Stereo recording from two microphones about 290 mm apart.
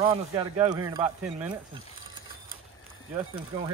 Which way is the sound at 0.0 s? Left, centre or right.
Centre.